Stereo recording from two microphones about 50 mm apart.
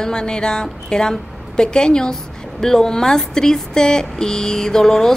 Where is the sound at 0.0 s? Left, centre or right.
Centre.